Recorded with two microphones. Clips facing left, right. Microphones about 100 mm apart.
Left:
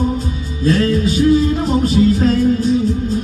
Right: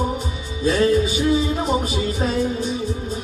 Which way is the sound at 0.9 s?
5° right (ahead or behind).